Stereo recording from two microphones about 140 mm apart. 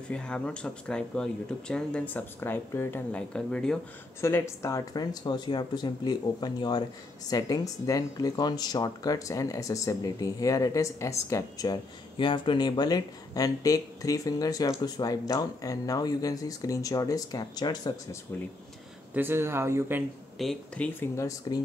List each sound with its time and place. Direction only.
0.1 s speech: 5° left (ahead or behind)
4.2 s speech: 20° left (ahead or behind)
19.1 s speech: 15° right (ahead or behind)
20.3 s speech: 5° left (ahead or behind)
21.2 s speech: 25° left (ahead or behind)